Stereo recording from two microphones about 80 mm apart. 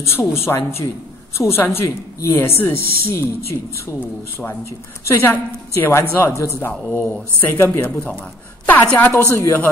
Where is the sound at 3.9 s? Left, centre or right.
Left.